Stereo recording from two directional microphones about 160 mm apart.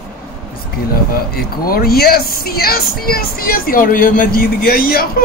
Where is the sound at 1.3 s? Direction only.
70° left (ahead or behind).